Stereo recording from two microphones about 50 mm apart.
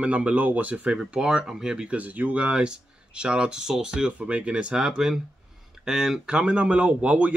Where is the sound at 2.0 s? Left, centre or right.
Right; by 4.1 s centre.